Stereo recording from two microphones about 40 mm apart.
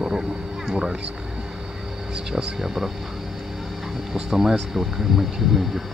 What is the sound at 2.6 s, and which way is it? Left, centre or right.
Speech, centre.